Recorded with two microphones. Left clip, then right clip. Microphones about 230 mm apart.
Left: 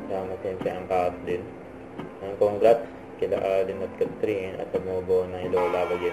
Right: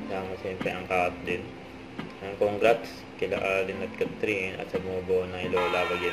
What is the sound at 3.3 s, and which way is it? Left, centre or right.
Speech, right.